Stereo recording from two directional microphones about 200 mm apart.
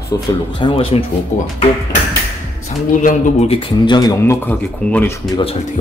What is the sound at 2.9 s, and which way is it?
Speech, 35° left (ahead or behind).